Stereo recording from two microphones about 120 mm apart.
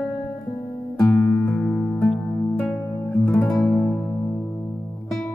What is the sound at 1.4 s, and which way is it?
Music, 10° left (ahead or behind).